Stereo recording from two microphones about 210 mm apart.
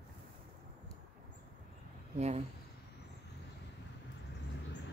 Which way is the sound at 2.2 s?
30° right (ahead or behind).